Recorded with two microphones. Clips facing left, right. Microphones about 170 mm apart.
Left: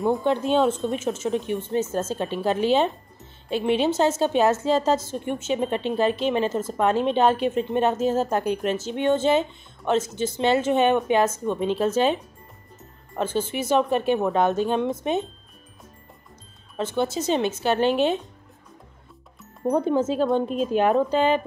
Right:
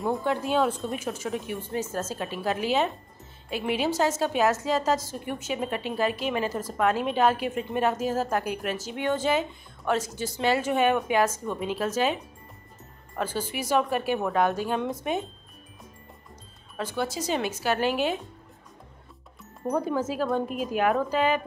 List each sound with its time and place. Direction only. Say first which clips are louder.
0.2 s a woman's voice: left 4 dB; 25° left (ahead or behind)
16.7 s a woman's voice: left 5 dB; 25° left (ahead or behind)
19.7 s a woman's voice: left 5 dB; 25° left (ahead or behind)